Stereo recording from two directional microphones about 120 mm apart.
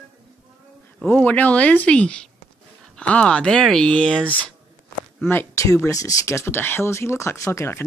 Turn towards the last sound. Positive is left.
turn(degrees=25)  # may be behind; listen again after turning